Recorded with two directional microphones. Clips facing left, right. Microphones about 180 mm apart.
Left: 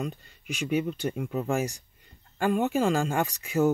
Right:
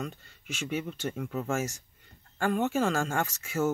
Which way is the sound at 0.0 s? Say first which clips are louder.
Left 4 dB; 15° left (ahead or behind).